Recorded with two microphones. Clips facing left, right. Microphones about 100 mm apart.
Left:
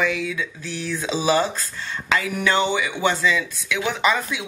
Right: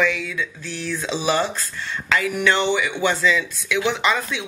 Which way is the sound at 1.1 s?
35° left (ahead or behind).